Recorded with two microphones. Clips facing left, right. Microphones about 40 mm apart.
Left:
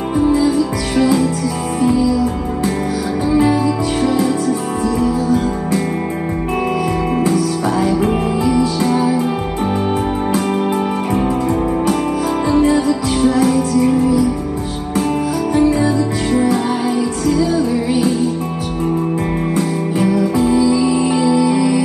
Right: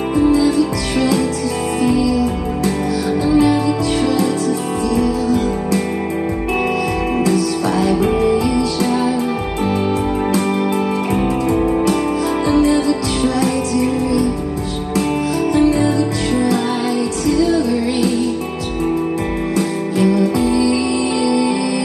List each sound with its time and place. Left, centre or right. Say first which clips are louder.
0.4 s music: even; right
1.8 s music: left 2 dB; right
3.3 s music: left 1 dB; right
4.5 s music: left 1 dB; right
7.2 s music: even; right
12.7 s music: left 1 dB; right
15.5 s music: left 1 dB; right
17.9 s music: left 1 dB; right
19.5 s music: left 1 dB; right